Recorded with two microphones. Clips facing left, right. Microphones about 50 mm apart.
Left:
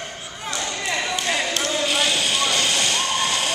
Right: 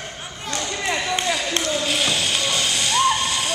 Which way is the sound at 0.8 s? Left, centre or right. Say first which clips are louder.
Right 2 dB; centre.